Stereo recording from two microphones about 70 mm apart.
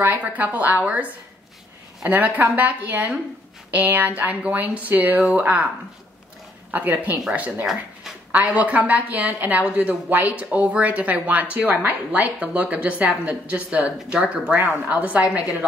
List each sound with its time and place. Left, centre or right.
0.0 s speech: right
6.7 s speech: right